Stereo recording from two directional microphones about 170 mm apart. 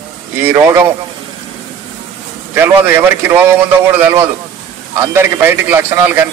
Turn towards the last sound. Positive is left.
turn(degrees=-15)  # may be behind; listen again after turning